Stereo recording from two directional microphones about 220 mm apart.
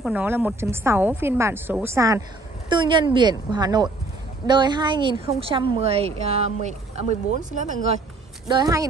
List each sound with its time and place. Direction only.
0.0 s a woman's voice: 5° right (ahead or behind); by 7.8 s 35° right (ahead or behind)
8.5 s a woman's voice: 15° right (ahead or behind)